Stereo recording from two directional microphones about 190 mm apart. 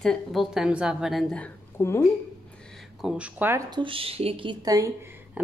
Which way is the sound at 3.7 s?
25° right (ahead or behind).